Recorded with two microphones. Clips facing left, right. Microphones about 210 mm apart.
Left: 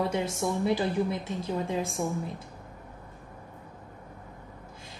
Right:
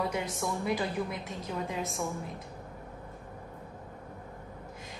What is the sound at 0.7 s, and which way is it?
A woman's voice, 30° left (ahead or behind).